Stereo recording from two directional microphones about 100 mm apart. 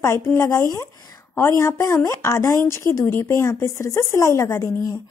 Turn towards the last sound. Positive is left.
turn(degrees=30)  # may be behind; listen again after turning